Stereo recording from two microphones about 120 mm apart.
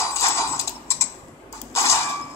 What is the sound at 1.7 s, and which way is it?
Mechanisms, 25° left (ahead or behind).